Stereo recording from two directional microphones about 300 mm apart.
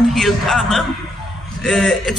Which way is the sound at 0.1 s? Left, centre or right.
Centre.